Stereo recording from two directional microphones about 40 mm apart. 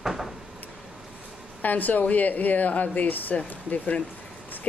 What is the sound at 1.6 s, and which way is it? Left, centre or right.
Speech, left.